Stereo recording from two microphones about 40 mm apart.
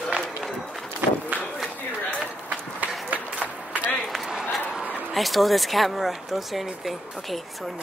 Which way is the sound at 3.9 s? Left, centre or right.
Centre.